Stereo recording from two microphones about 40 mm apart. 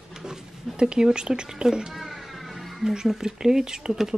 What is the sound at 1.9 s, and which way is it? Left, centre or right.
Speech, centre.